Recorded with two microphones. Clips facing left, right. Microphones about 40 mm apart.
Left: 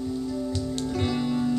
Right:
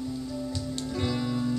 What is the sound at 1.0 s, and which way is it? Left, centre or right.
Music, centre.